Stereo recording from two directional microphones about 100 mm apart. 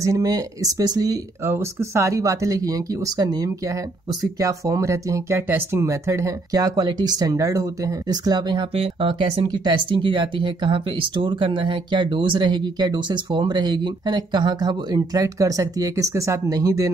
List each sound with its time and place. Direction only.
0.0 s speech: 35° right (ahead or behind)
1.4 s speech: 25° right (ahead or behind); by 8.6 s 45° right (ahead or behind)
9.0 s speech: 60° right (ahead or behind); by 16.9 s 35° right (ahead or behind)